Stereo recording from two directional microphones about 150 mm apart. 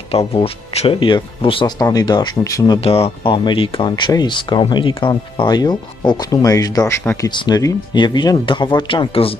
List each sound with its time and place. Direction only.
0.1 s speech: 40° left (ahead or behind); by 2.8 s 25° left (ahead or behind)
2.8 s speech: 40° left (ahead or behind)